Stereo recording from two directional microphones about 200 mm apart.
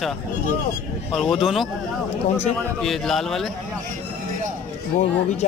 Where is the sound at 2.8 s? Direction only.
Centre (ahead or behind).